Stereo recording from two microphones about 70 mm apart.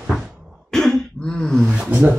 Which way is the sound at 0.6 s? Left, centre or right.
Centre.